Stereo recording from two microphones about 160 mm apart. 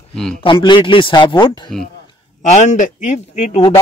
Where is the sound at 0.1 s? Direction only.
5° left (ahead or behind).